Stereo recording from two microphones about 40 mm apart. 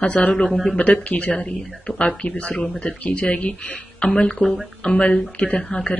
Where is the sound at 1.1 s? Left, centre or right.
Left.